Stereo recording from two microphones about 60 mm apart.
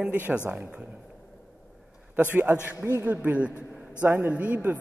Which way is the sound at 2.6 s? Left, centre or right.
Right.